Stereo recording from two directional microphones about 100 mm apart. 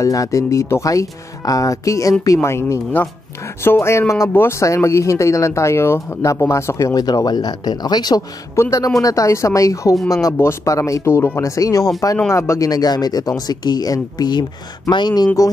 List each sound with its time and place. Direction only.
0.0 s speech: 35° left (ahead or behind)
8.5 s speech: 35° left (ahead or behind)